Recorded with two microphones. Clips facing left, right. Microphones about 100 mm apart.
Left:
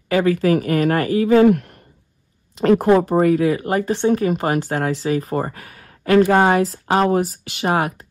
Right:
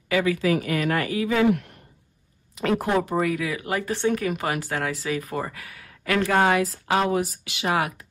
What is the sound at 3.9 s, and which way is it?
Speech, 25° left (ahead or behind).